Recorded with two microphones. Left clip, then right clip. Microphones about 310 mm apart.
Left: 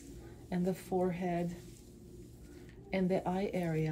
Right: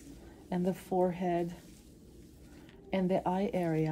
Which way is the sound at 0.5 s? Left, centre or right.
Right.